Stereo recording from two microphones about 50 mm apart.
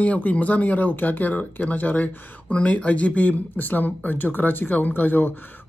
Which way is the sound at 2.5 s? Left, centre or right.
Left.